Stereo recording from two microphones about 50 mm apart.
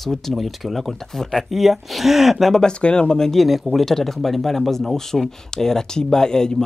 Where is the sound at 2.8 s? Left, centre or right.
Centre.